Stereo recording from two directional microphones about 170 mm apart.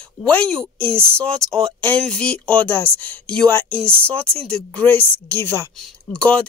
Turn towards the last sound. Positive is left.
turn(degrees=5)  # may be behind; listen again after turning